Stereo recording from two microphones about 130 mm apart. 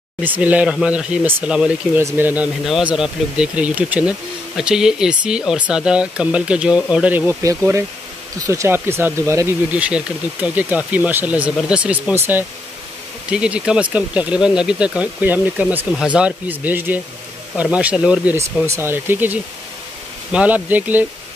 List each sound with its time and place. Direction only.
0.2 s speech: 15° right (ahead or behind)
9.8 s speech: 10° right (ahead or behind)